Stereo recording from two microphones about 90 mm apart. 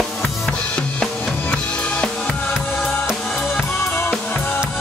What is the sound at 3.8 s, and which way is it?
Drum kit, 25° left (ahead or behind).